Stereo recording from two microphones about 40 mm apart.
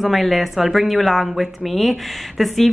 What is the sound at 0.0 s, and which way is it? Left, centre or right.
A woman's voice, centre.